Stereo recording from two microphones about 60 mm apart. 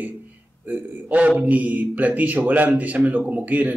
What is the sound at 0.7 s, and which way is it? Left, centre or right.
A man's voice, right.